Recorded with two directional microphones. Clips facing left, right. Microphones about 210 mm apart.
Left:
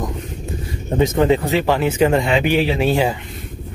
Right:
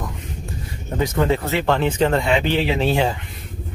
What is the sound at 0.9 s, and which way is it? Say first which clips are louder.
Speech: left 5 dB; 20° left (ahead or behind).